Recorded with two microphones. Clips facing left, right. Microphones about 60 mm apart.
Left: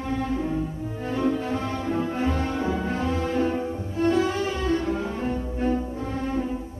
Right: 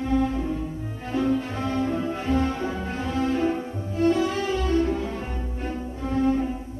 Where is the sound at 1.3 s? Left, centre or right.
Left.